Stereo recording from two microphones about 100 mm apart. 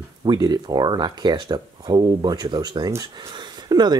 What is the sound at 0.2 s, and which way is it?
Speech, 45° right (ahead or behind).